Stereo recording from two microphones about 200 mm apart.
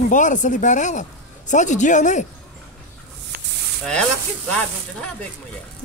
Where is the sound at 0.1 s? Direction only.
40° left (ahead or behind).